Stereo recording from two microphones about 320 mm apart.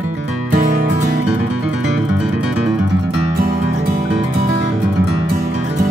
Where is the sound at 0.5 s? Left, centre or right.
Right.